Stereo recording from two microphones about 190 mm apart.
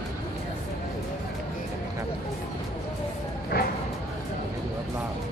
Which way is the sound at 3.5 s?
55° left (ahead or behind).